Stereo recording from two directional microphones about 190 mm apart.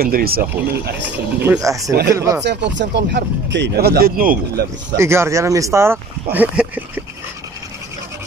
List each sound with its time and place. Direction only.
0.0 s speech: 50° right (ahead or behind)
1.4 s speech: 15° right (ahead or behind)
2.4 s speech: 65° right (ahead or behind)
4.9 s speech: 15° right (ahead or behind)
6.3 s a sound: 5° right (ahead or behind)